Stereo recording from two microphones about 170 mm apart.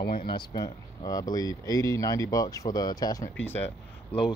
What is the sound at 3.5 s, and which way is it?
Speech, 35° left (ahead or behind).